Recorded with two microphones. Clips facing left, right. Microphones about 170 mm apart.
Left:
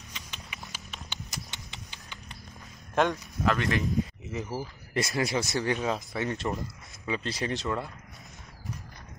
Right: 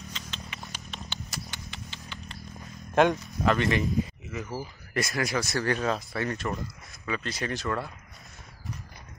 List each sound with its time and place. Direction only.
0.1 s horse: 10° left (ahead or behind)
0.6 s clip-clop: 5° left (ahead or behind)
1.3 s a sound: 20° left (ahead or behind)
3.4 s speech: centre (ahead or behind)
4.4 s speech: 20° left (ahead or behind)